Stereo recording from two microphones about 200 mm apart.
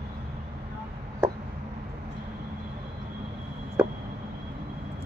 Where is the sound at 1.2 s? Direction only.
10° right (ahead or behind).